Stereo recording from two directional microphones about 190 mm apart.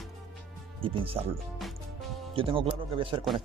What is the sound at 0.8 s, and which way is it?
Speech, 30° right (ahead or behind).